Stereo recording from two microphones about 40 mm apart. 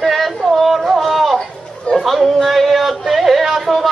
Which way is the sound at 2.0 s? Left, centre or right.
Centre.